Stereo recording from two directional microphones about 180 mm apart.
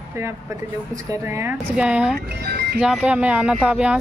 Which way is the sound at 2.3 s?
65° right (ahead or behind).